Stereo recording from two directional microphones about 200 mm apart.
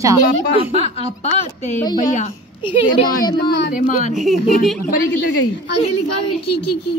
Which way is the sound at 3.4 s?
60° left (ahead or behind).